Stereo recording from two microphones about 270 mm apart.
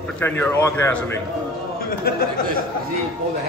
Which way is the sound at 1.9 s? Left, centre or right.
Left.